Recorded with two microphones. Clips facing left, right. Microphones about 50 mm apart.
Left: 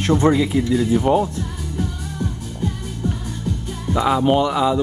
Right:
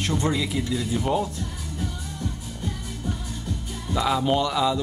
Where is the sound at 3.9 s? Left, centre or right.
Left.